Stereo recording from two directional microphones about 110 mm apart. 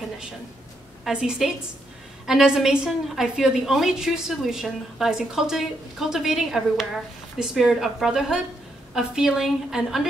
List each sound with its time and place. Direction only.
1.0 s a woman's voice: 5° right (ahead or behind)